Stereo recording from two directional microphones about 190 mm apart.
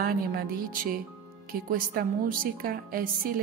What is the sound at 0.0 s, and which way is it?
Music, 50° right (ahead or behind).